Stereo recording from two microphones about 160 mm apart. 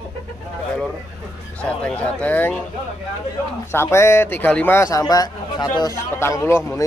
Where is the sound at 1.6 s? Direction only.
10° left (ahead or behind).